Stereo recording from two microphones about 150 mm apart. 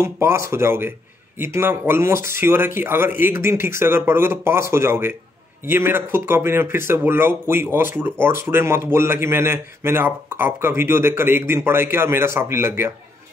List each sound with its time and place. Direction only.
0.0 s speech: 15° right (ahead or behind)